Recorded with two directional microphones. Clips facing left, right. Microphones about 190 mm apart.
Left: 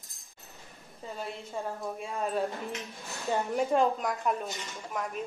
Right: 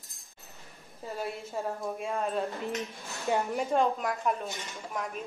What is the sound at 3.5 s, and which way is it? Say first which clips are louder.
Speech: left 1 dB; centre (ahead or behind).